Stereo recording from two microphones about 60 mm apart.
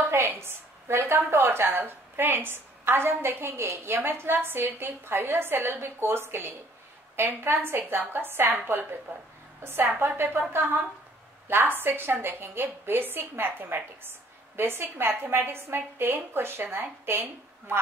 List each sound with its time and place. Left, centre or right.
0.1 s a woman's voice: right